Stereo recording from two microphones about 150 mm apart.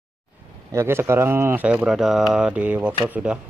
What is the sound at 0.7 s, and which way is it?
Speech, 15° right (ahead or behind).